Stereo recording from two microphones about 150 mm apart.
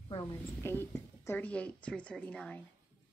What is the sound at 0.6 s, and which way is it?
A woman's voice, 15° left (ahead or behind).